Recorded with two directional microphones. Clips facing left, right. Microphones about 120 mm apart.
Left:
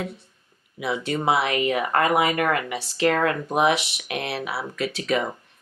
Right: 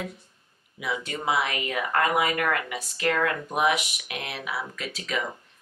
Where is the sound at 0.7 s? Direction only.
30° left (ahead or behind).